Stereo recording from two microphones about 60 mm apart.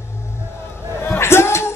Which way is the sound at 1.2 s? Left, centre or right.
Left.